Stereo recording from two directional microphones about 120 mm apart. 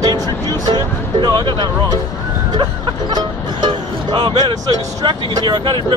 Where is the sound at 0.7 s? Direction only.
40° right (ahead or behind).